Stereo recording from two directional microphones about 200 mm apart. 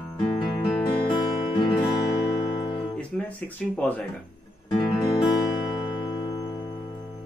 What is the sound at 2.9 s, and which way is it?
Speech, 5° left (ahead or behind).